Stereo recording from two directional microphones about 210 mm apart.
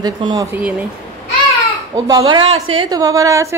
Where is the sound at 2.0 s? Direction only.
20° right (ahead or behind).